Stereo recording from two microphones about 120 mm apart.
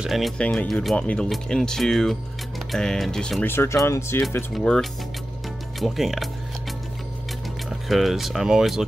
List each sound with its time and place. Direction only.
0.0 s speech: centre (ahead or behind)
3.4 s speech: 20° left (ahead or behind)
4.6 s speech: 5° left (ahead or behind)
7.9 s speech: centre (ahead or behind)